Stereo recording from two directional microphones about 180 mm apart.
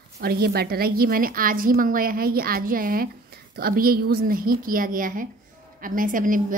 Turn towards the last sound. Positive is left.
turn(degrees=-50)  # may be behind; listen again after turning